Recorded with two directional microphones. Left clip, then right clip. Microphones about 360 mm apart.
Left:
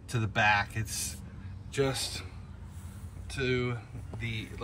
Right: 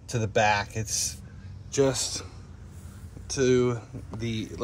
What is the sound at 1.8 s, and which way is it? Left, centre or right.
Speech, centre.